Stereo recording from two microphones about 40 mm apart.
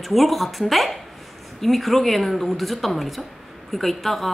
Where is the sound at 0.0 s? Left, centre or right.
Centre.